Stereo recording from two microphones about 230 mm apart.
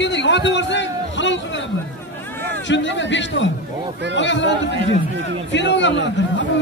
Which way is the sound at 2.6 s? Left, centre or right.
Left.